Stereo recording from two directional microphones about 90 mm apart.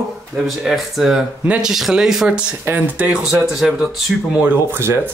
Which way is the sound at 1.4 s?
15° right (ahead or behind).